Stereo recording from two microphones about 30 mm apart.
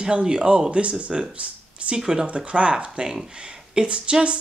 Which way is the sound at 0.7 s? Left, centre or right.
Right.